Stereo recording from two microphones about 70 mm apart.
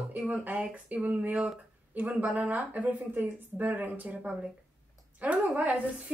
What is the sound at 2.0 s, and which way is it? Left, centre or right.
A woman's voice, centre.